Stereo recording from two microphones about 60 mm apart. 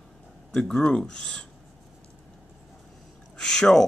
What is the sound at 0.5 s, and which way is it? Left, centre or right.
Speech, centre.